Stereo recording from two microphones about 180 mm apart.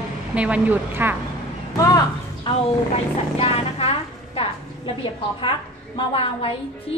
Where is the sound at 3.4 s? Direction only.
35° left (ahead or behind).